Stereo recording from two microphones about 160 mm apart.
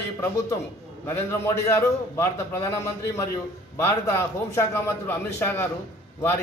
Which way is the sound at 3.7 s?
15° left (ahead or behind).